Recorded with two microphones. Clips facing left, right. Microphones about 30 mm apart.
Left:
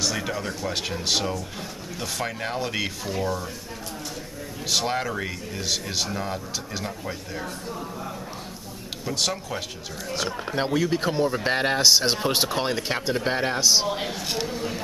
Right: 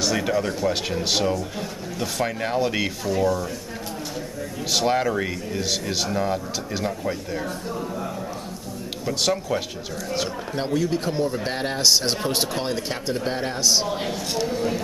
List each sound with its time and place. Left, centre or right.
0.0 s a man's voice: centre
4.6 s a man's voice: centre
9.0 s a man's voice: centre
10.5 s speech: centre
11.8 s speech: centre
13.6 s speech: centre
14.5 s a man's voice: centre